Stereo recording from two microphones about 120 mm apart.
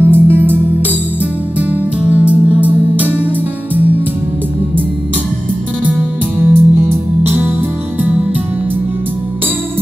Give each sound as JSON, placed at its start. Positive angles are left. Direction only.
{"t": 0.0, "sound": "music", "side_deg": -20}
{"t": 1.6, "sound": "music", "side_deg": -10}
{"t": 6.5, "sound": "music", "side_deg": -20}